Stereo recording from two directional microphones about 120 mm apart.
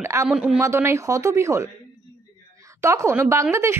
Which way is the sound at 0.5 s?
25° right (ahead or behind).